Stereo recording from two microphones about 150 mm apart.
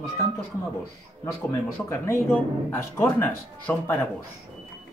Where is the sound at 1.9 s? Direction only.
15° left (ahead or behind).